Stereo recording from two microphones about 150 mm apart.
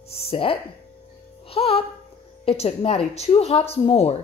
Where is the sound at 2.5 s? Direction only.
45° left (ahead or behind).